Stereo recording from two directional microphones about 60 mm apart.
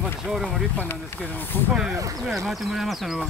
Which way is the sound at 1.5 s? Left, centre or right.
Left.